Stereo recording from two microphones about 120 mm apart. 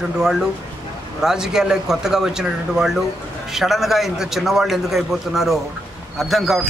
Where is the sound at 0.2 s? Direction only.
5° right (ahead or behind).